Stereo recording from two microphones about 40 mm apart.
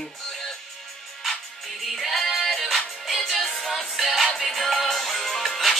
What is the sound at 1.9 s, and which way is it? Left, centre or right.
Music, centre.